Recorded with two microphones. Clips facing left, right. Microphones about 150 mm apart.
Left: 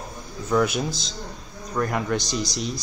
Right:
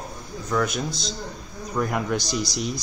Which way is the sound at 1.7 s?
5° right (ahead or behind).